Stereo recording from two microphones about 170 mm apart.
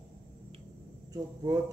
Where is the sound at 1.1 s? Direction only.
20° right (ahead or behind).